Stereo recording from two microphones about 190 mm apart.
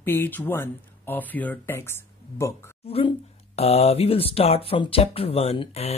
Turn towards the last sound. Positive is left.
turn(degrees=35)  # may be behind; listen again after turning